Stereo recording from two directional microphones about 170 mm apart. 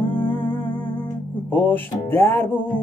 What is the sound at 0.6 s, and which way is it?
Music, 30° left (ahead or behind).